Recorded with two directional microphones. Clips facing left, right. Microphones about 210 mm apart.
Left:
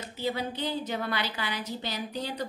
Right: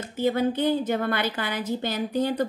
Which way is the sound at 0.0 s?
50° right (ahead or behind).